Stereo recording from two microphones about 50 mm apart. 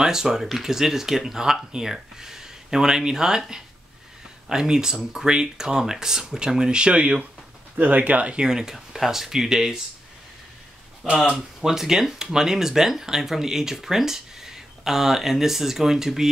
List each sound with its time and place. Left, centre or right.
0.0 s speech: centre
7.7 s speech: right
8.4 s speech: centre
11.2 s speech: centre